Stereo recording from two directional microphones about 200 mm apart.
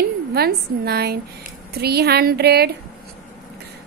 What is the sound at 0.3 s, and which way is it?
A woman's voice, 50° right (ahead or behind).